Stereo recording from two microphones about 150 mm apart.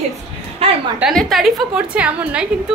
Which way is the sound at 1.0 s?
Centre (ahead or behind).